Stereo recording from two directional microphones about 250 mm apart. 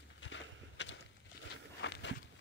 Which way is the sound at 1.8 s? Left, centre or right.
Left.